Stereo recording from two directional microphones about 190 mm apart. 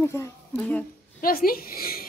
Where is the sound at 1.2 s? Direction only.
50° left (ahead or behind).